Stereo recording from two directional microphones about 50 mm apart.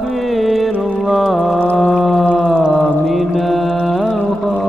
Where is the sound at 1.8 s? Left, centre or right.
Centre.